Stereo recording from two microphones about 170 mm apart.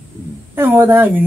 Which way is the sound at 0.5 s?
10° right (ahead or behind).